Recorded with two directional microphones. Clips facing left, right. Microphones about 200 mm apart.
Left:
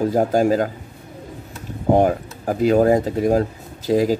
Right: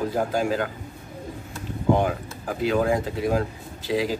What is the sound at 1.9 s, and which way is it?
Speech, 45° left (ahead or behind).